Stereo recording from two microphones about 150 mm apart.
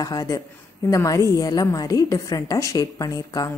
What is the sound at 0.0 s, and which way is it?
A woman's voice, 25° left (ahead or behind).